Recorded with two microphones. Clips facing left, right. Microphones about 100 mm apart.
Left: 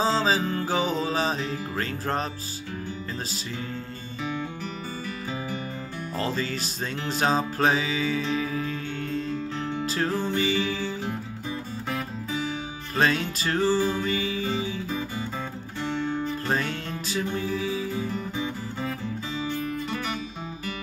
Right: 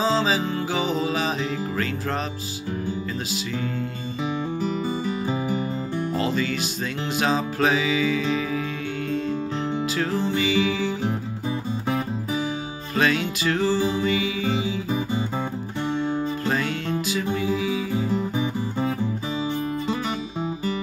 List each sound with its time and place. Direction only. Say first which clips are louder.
0.2 s music: right 1 dB; 40° left (ahead or behind)
6.2 s music: right 4 dB; 35° left (ahead or behind)
9.9 s music: even; 35° left (ahead or behind)
12.9 s music: right 2 dB; 35° left (ahead or behind)
14.6 s music: right 4 dB; 15° right (ahead or behind)
16.4 s music: right 2 dB; 35° left (ahead or behind)
17.9 s music: right 6 dB; 20° right (ahead or behind)